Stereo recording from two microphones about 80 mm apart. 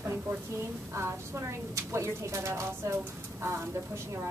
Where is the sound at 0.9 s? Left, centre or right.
Right.